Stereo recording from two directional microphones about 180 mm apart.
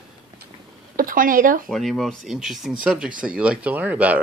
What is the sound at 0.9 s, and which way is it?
Speech, 50° right (ahead or behind).